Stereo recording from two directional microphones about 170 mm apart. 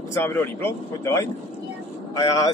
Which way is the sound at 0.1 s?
15° left (ahead or behind).